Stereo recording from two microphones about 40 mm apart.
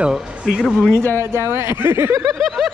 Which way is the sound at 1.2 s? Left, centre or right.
Right.